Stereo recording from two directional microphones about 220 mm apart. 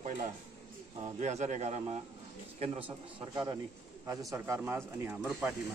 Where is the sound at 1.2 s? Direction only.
30° right (ahead or behind).